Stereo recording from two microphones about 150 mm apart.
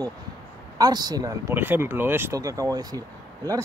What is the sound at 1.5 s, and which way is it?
Speech, 15° right (ahead or behind).